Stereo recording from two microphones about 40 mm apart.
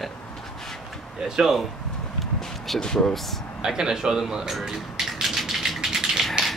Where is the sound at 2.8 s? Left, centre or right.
Centre.